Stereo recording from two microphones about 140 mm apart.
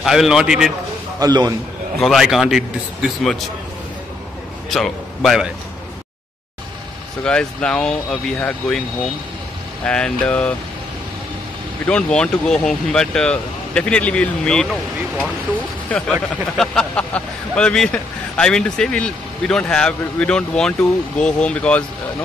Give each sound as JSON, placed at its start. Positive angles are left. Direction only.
{"t": 0.0, "sound": "a man's voice", "side_deg": 0}
{"t": 1.2, "sound": "a man's voice", "side_deg": -30}
{"t": 2.0, "sound": "a man's voice", "side_deg": 0}
{"t": 4.6, "sound": "a man's voice", "side_deg": 0}
{"t": 7.2, "sound": "a man's voice", "side_deg": 5}
{"t": 11.8, "sound": "speech", "side_deg": 5}